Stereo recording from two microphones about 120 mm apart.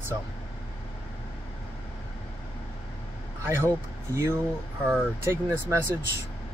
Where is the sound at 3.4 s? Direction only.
20° right (ahead or behind).